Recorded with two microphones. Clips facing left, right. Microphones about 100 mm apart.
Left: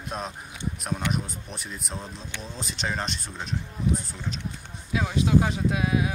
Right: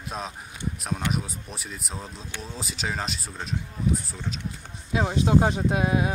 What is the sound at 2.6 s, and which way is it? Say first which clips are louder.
Speech: left 1 dB; 5° right (ahead or behind).